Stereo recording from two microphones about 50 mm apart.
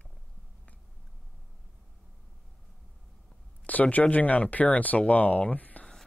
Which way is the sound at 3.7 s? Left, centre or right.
Left.